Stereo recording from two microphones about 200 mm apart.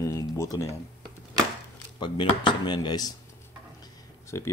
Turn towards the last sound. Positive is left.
turn(degrees=15)  # may be behind; listen again after turning